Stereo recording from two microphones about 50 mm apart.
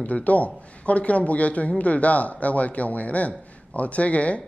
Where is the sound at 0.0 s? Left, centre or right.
Left.